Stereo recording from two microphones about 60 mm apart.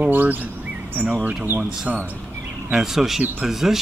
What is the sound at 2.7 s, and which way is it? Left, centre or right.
Speech, centre.